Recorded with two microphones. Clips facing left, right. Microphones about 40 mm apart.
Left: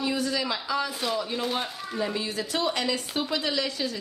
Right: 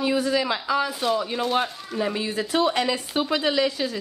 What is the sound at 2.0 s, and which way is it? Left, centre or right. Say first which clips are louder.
A woman's voice: right 4 dB; right.